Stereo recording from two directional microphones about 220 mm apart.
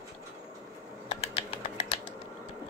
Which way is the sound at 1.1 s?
25° left (ahead or behind).